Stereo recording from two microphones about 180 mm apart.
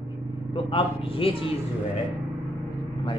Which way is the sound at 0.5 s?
30° left (ahead or behind).